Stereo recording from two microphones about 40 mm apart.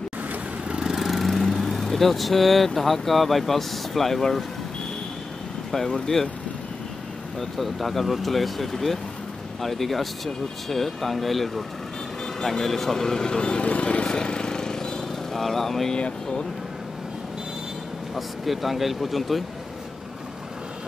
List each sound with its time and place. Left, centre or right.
0.7 s lawn mower: right
0.9 s vehicle: centre
1.3 s speech: centre
7.3 s speech: centre
15.9 s speech: centre
18.1 s speech: centre